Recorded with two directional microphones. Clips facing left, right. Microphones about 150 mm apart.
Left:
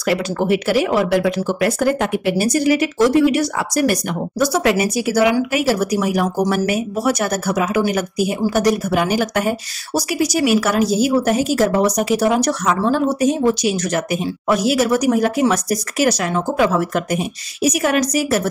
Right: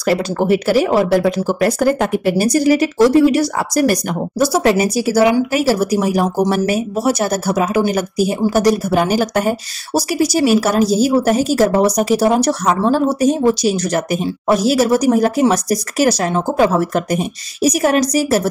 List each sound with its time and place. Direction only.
0.0 s speech: 40° right (ahead or behind)